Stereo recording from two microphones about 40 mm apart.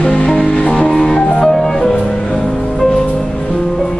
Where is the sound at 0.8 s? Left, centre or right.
Centre.